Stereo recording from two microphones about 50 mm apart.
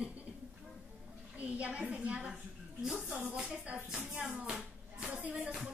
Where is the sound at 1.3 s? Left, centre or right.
Right.